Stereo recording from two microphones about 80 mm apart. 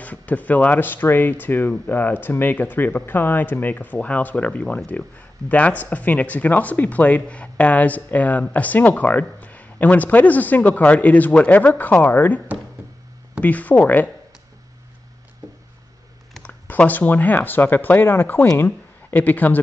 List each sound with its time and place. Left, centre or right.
0.0 s speech: centre
13.4 s speech: centre
16.4 s speech: centre